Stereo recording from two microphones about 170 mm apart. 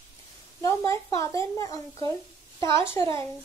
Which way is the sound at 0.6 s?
20° left (ahead or behind).